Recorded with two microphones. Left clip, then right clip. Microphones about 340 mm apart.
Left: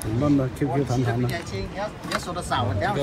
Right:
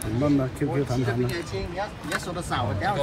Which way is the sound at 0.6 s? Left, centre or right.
Centre.